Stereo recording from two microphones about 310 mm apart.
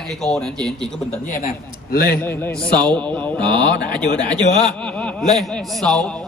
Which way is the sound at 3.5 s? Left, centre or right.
Centre.